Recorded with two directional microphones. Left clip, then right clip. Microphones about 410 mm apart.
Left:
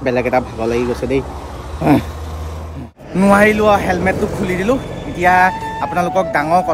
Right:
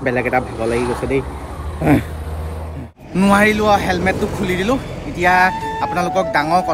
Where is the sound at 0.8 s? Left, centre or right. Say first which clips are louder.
Left 1 dB; centre.